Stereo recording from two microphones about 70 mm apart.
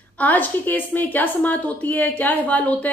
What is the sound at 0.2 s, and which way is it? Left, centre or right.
A woman's voice, left.